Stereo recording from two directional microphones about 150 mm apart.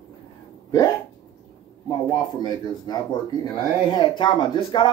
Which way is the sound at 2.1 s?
25° left (ahead or behind).